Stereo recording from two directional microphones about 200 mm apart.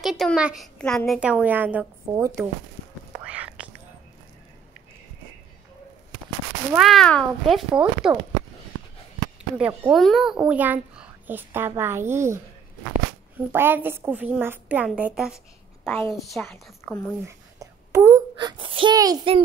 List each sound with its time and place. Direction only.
0.0 s a woman's voice: centre (ahead or behind)
3.3 s whispering: 5° right (ahead or behind)
6.7 s a woman's voice: centre (ahead or behind)
9.6 s a woman's voice: 5° right (ahead or behind)
13.5 s a woman's voice: 10° right (ahead or behind); by 17.1 s 5° left (ahead or behind)
17.3 s a child's voice: 15° right (ahead or behind)